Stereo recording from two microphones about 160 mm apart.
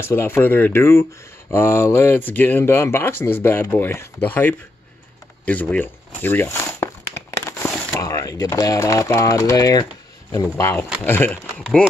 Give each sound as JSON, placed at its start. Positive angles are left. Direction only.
{"t": 0.0, "sound": "speech", "side_deg": 15}
{"t": 5.4, "sound": "a sound", "side_deg": 10}
{"t": 7.9, "sound": "speech", "side_deg": 20}